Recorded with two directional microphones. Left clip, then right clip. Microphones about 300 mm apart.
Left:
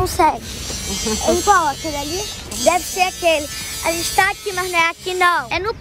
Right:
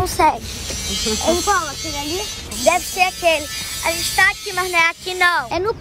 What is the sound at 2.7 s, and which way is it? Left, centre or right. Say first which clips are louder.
Speech: even; centre.